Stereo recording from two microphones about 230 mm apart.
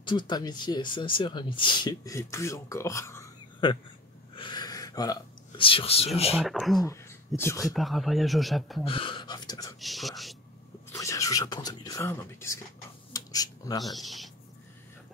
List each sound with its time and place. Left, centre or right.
0.0 s speech: centre
4.4 s a sound: centre
6.3 s speech: centre
6.8 s speech: centre
7.7 s speech: centre
8.8 s speech: left
9.8 s speech: centre
10.9 s speech: centre
13.1 s a sound: centre
13.8 s speech: centre